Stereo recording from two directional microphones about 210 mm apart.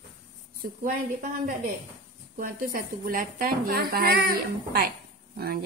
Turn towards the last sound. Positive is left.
turn(degrees=-45)  # may be behind; listen again after turning